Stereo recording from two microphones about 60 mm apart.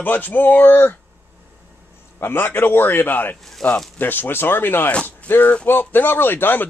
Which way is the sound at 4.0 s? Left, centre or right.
Left.